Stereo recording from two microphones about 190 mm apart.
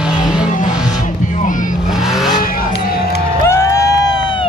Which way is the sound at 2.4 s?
50° left (ahead or behind).